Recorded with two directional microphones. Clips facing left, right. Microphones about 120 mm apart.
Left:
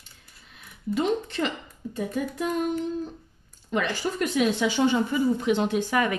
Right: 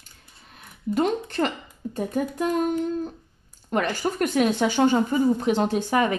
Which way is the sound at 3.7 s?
50° right (ahead or behind).